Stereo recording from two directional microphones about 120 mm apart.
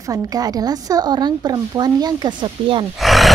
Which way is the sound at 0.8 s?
35° right (ahead or behind).